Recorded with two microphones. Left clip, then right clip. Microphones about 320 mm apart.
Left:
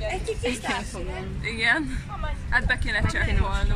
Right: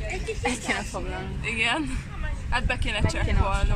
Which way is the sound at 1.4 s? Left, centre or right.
Centre.